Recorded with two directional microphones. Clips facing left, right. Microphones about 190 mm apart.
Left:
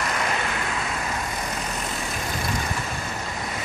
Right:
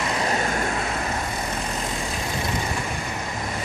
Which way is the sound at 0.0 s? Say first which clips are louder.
Right 2 dB; 30° right (ahead or behind).